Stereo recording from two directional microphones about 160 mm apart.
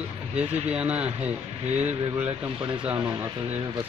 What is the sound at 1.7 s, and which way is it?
Speech, 40° right (ahead or behind).